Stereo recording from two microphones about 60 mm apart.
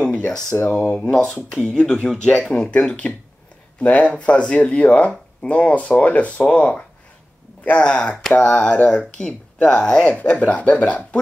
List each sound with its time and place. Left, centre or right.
0.7 s speech: centre